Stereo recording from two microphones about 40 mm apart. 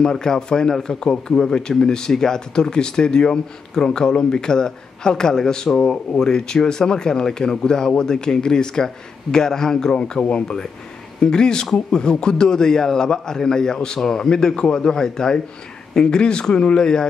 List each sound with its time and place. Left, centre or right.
0.0 s a man's voice: centre